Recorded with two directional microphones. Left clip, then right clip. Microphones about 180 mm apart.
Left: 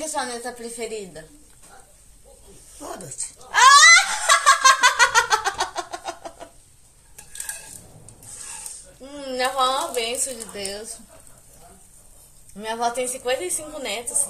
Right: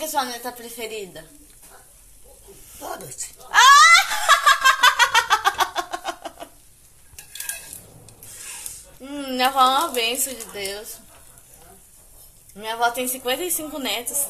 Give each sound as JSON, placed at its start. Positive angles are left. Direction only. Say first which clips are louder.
{"t": 0.1, "sound": "a woman's voice", "louder": "right 3 dB", "side_deg": -5}
{"t": 3.4, "sound": "laughter", "louder": "even", "side_deg": -5}
{"t": 9.0, "sound": "a woman's voice", "louder": "right 3 dB", "side_deg": -10}
{"t": 12.5, "sound": "a woman's voice", "louder": "right 2 dB", "side_deg": -5}